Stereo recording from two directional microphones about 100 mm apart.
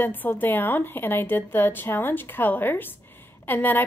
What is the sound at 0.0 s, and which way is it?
A woman's voice, 20° left (ahead or behind).